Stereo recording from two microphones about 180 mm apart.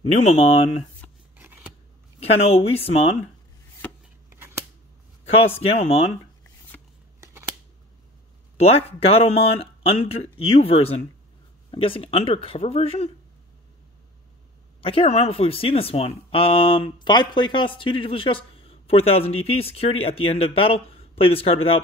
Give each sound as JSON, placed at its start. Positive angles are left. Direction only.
{"t": 0.1, "sound": "speech", "side_deg": 35}
{"t": 1.3, "sound": "scissors", "side_deg": -10}
{"t": 2.1, "sound": "speech", "side_deg": 35}
{"t": 4.3, "sound": "scissors", "side_deg": -15}
{"t": 5.6, "sound": "speech", "side_deg": 35}
{"t": 8.5, "sound": "speech", "side_deg": 35}
{"t": 14.8, "sound": "speech", "side_deg": 30}